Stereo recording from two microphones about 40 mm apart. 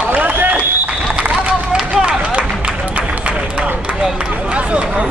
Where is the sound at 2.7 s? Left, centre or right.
Right.